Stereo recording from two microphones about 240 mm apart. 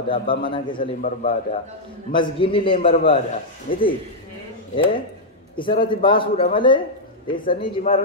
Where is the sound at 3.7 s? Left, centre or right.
Left.